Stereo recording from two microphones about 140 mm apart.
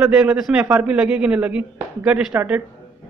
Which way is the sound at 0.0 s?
10° right (ahead or behind).